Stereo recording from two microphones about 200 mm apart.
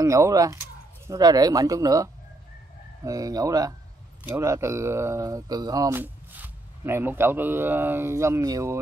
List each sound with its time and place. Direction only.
0.0 s speech: 15° right (ahead or behind)